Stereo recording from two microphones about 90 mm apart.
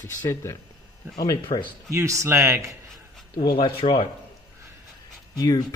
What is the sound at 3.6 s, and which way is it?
Speech, 85° left.